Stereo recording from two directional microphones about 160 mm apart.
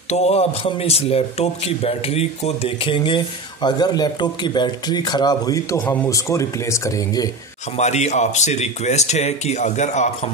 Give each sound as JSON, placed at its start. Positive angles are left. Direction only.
{"t": 0.1, "sound": "a man's voice", "side_deg": 45}
{"t": 7.7, "sound": "speech", "side_deg": 45}